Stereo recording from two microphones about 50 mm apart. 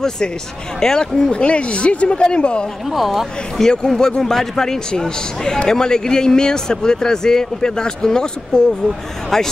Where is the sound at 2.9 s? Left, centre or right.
Centre.